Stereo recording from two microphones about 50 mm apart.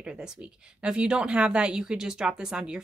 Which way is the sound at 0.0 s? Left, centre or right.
Centre.